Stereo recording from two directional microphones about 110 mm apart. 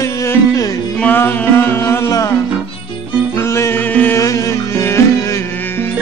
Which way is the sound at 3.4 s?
25° left (ahead or behind).